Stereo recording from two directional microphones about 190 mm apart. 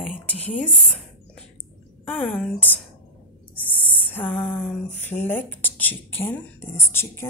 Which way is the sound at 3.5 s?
10° left (ahead or behind).